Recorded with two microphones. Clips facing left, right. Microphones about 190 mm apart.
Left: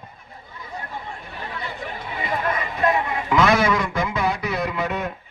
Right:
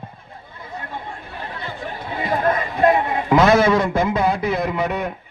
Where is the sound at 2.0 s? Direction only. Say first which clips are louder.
Right 6 dB; 35° right (ahead or behind).